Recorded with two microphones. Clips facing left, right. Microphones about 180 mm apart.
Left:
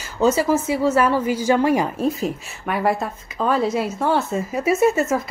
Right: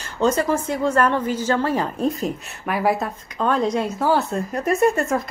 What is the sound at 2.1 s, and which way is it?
Speech, centre (ahead or behind).